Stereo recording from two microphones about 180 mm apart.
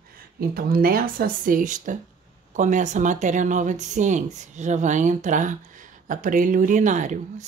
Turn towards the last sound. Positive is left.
turn(degrees=-45)  # may be behind; listen again after turning